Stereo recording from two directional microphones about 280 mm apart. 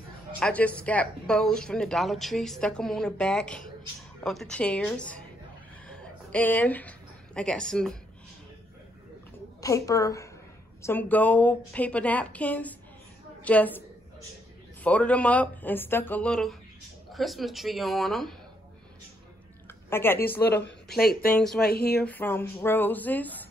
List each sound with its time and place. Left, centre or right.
0.4 s speech: centre
5.9 s a sound: centre
9.6 s a woman's voice: centre
19.9 s a woman's voice: centre
20.2 s a woman's voice: left
21.4 s speech: centre
21.6 s a woman's voice: left
22.0 s speech: centre